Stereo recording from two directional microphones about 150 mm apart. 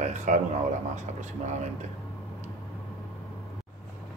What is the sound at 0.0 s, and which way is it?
Speech, 55° right (ahead or behind).